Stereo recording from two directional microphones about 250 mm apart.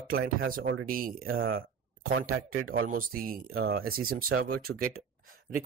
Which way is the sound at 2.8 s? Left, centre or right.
Right.